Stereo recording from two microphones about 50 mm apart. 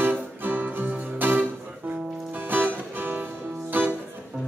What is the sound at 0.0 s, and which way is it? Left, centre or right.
Music, right.